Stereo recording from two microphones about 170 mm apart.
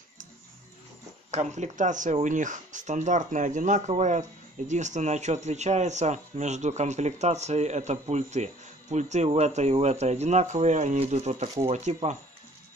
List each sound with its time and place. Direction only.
1.3 s speech: 45° right (ahead or behind)